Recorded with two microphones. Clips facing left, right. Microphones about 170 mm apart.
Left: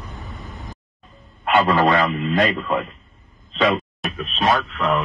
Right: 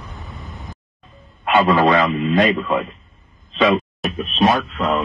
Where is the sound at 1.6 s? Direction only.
25° right (ahead or behind).